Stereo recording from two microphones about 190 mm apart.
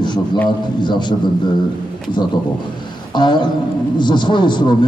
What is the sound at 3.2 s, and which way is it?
A man's voice, 25° left (ahead or behind).